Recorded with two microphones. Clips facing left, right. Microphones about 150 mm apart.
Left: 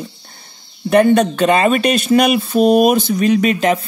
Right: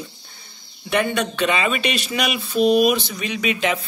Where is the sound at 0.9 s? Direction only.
45° left (ahead or behind).